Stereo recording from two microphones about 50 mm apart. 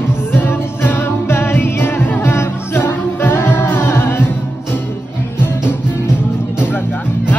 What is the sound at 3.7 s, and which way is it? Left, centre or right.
Music, left.